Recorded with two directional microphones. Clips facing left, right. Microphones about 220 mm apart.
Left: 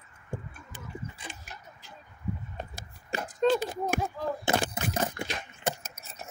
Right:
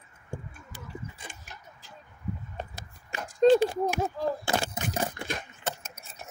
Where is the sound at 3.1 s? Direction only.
35° left (ahead or behind).